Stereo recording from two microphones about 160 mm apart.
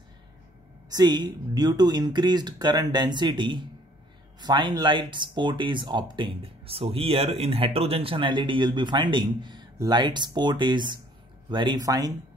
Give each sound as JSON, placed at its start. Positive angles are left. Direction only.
{"t": 0.8, "sound": "speech", "side_deg": -25}